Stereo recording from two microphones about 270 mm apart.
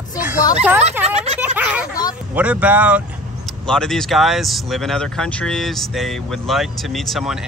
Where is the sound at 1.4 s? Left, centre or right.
Centre.